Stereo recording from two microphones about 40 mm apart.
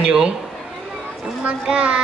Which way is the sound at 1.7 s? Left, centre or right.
Right.